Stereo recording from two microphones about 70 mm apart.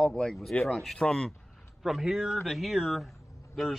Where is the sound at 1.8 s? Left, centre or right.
Centre.